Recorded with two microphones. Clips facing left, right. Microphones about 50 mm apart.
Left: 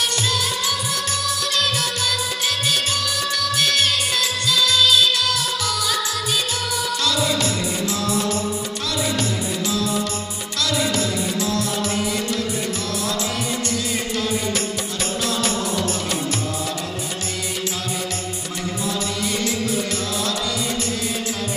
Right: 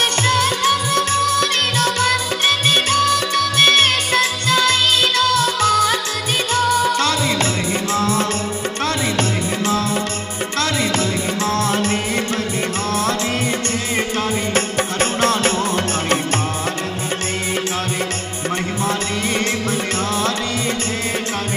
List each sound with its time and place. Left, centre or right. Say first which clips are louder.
0.0 s music: right 6 dB; right
11.4 s music: right 4 dB; right
14.5 s music: right 6 dB; right